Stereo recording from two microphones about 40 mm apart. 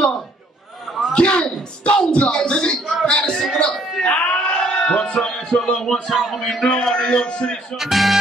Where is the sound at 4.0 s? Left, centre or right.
Left.